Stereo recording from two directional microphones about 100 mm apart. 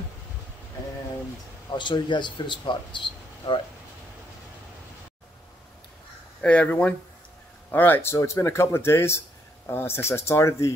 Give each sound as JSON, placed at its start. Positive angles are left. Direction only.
{"t": 1.7, "sound": "speech", "side_deg": 50}
{"t": 6.4, "sound": "speech", "side_deg": 15}